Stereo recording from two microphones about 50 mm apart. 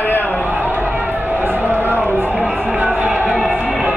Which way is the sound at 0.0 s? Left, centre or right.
Left.